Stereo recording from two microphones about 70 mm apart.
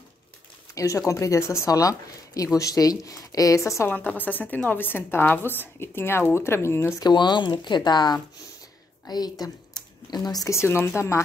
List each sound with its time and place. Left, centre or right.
0.7 s speech: left
1.7 s a woman's voice: left
3.9 s a woman's voice: left
7.0 s speech: left
9.0 s speech: left
10.5 s a woman's voice: left